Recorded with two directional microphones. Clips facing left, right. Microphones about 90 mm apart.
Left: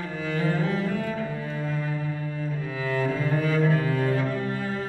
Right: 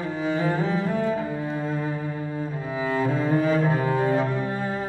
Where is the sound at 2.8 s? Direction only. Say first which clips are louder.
Right 3 dB; 20° right (ahead or behind).